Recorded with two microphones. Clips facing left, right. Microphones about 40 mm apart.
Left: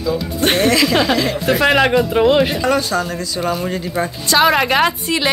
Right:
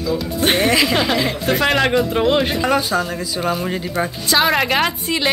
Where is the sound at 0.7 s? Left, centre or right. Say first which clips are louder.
Left 2 dB; centre.